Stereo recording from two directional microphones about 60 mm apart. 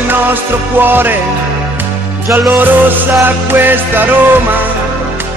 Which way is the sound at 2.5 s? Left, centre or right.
Right.